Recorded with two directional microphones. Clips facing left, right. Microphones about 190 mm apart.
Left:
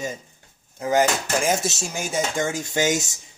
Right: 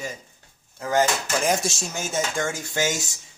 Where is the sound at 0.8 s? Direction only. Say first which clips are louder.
Left 2 dB; 15° left (ahead or behind).